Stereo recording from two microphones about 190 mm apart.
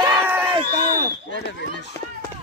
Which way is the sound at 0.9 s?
50° right (ahead or behind).